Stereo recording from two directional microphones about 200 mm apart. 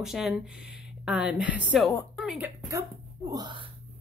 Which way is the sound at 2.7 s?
15° right (ahead or behind).